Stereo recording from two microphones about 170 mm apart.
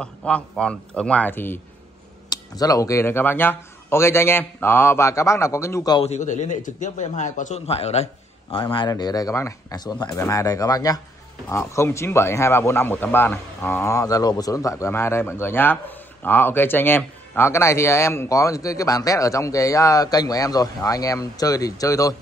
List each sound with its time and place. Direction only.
0.0 s speech: 5° left (ahead or behind)
5.9 s a man's voice: 40° left (ahead or behind)
8.7 s speech: 25° left (ahead or behind)